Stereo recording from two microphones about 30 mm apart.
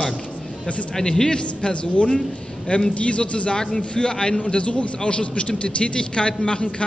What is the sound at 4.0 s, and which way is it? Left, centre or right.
A man's voice, left.